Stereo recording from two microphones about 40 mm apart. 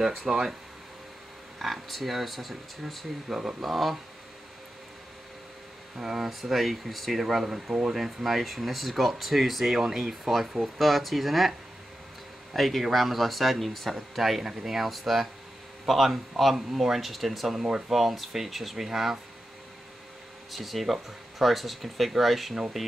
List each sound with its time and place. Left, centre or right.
0.3 s speech: centre
1.6 s speech: centre
3.3 s speech: centre
3.6 s speech: centre
5.9 s speech: centre
12.5 s speech: centre
17.6 s speech: centre
17.9 s speech: centre
20.5 s speech: centre